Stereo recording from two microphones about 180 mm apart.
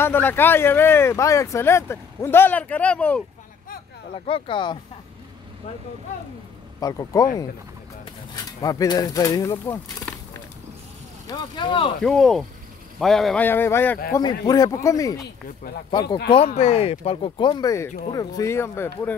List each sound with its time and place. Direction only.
0.0 s speech: 10° left (ahead or behind)
4.3 s speech: 25° left (ahead or behind)
6.8 s speech: 20° left (ahead or behind)
8.5 s speech: 20° left (ahead or behind)
11.2 s speech: 25° left (ahead or behind)
12.0 s speech: centre (ahead or behind); by 16.2 s 25° left (ahead or behind)
16.5 s speech: 35° left (ahead or behind); by 18.9 s 15° left (ahead or behind)